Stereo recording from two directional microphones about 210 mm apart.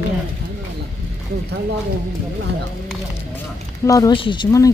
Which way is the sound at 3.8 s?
15° left (ahead or behind).